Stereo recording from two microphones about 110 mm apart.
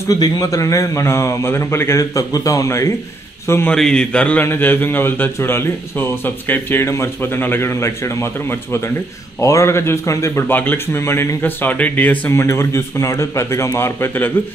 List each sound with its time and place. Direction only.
0.1 s a man's voice: 35° left (ahead or behind)
3.7 s a man's voice: 5° left (ahead or behind)